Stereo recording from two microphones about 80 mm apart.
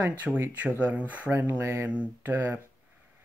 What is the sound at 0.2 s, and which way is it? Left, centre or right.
Speech, right.